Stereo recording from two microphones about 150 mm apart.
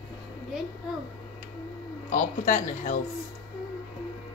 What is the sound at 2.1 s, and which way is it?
Speech, 55° left (ahead or behind).